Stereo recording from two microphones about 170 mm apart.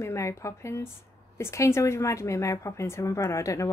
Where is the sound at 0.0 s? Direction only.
15° left (ahead or behind).